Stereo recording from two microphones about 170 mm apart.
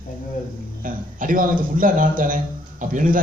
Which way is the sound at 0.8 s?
55° right (ahead or behind).